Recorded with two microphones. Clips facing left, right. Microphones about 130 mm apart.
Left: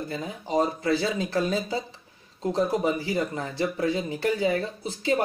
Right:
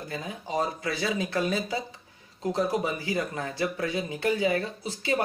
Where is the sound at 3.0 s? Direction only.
30° left (ahead or behind).